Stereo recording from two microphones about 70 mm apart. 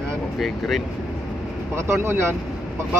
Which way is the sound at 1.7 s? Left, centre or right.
Right.